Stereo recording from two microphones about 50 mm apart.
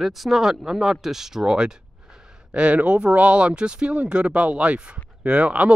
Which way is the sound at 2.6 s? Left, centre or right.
Right.